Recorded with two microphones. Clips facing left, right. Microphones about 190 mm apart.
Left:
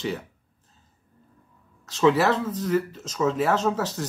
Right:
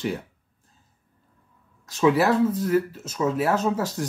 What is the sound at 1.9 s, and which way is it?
Speech, 10° right (ahead or behind).